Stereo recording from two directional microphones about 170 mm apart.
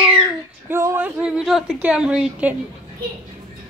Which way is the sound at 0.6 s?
15° right (ahead or behind).